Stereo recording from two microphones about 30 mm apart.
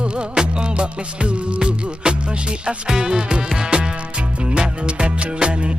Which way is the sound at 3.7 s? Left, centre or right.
Right.